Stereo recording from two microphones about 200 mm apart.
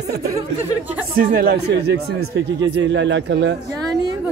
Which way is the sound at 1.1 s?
45° right (ahead or behind).